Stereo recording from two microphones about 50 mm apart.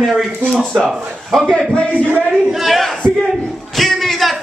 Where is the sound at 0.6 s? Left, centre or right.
Centre.